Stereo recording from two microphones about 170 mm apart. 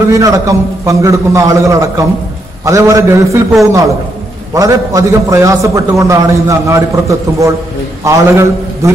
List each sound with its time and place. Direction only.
0.1 s a man's voice: 20° right (ahead or behind)
4.6 s a man's voice: 20° right (ahead or behind)